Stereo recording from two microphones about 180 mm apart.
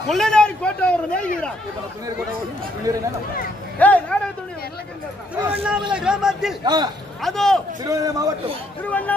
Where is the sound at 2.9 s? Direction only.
20° right (ahead or behind).